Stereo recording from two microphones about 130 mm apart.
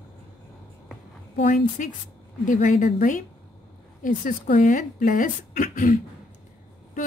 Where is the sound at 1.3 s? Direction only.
70° left (ahead or behind).